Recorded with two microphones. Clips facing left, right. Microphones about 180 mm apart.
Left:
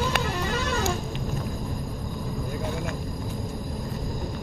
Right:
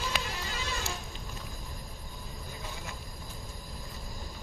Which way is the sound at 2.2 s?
65° left (ahead or behind).